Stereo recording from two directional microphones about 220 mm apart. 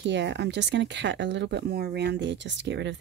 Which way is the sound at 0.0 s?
50° right (ahead or behind).